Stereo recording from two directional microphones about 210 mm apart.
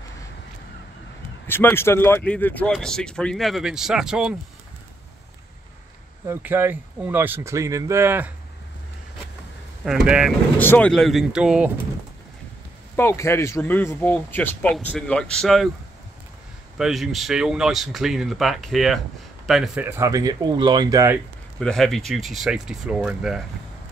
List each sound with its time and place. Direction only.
1.5 s speech: 10° left (ahead or behind)
6.2 s speech: 10° right (ahead or behind)
9.8 s speech: 5° right (ahead or behind)
10.6 s speech: 10° left (ahead or behind)
12.9 s speech: 15° left (ahead or behind)
16.7 s speech: centre (ahead or behind)
21.5 s speech: centre (ahead or behind)